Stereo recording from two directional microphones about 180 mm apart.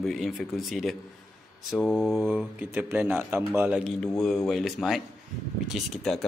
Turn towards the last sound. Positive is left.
turn(degrees=0)  # may be behind; listen again after turning